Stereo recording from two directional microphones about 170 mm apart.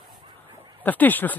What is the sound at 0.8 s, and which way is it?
Speech, 10° left (ahead or behind).